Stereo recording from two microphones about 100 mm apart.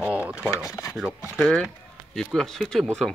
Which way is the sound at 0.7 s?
35° left (ahead or behind).